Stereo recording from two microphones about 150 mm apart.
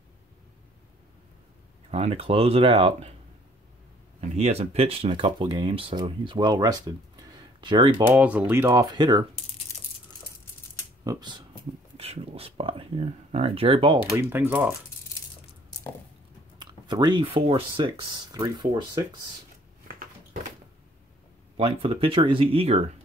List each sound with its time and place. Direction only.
1.9 s speech: 40° right (ahead or behind)
4.4 s speech: 45° right (ahead or behind)
8.0 s speech: 10° right (ahead or behind)
8.9 s speech: 30° right (ahead or behind)
11.1 s speech: 30° right (ahead or behind)
12.0 s speech: 40° right (ahead or behind)
14.1 s speech: 15° right (ahead or behind)
16.5 s speech: 30° right (ahead or behind)
21.5 s speech: 40° right (ahead or behind)